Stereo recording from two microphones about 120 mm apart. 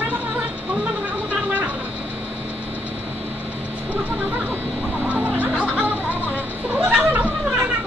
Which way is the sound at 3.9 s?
15° right (ahead or behind).